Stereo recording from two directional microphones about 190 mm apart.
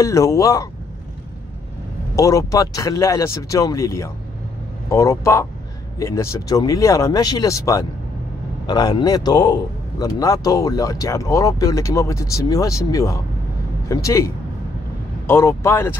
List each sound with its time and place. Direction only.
0.0 s a man's voice: 15° left (ahead or behind)
2.1 s a man's voice: 15° left (ahead or behind)